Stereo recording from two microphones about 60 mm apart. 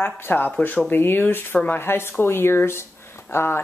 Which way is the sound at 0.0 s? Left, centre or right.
Left.